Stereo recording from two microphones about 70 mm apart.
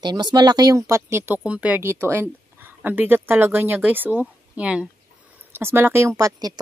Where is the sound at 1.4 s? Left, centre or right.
Centre.